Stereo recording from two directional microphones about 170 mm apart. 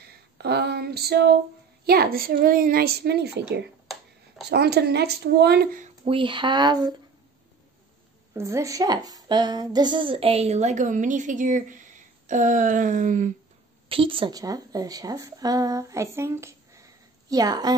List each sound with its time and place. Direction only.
0.4 s a sound: 70° right (ahead or behind)
1.9 s a child's voice: 65° right (ahead or behind)
6.0 s speech: 30° right (ahead or behind)
8.4 s a woman's voice: 15° right (ahead or behind); by 11.8 s 50° right (ahead or behind)
12.3 s a sound: 45° right (ahead or behind)
13.8 s a woman's voice: 30° right (ahead or behind)